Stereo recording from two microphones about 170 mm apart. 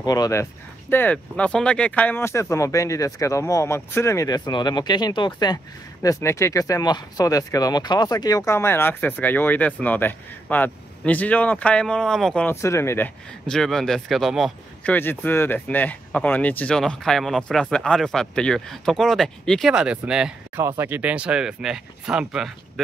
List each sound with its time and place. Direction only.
0.0 s speech: 20° left (ahead or behind); by 12.5 s 5° left (ahead or behind)
12.6 s speech: 15° left (ahead or behind); by 20.6 s 5° right (ahead or behind)
20.6 s speech: 15° right (ahead or behind)